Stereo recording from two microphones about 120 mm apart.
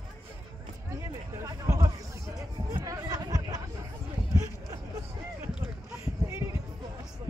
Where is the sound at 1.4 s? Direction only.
25° right (ahead or behind).